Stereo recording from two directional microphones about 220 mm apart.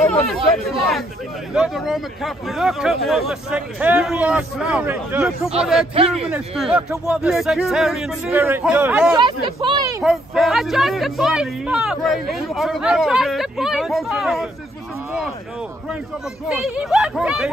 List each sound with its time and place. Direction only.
0.7 s speech: centre (ahead or behind)
5.9 s speech: 25° right (ahead or behind)
6.2 s speech: 5° right (ahead or behind)
9.1 s speech: 20° right (ahead or behind)
10.0 s speech: centre (ahead or behind)
16.4 s speech: centre (ahead or behind)